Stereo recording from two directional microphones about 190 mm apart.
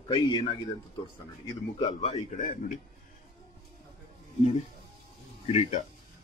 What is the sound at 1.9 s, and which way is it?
Speech, 35° left (ahead or behind).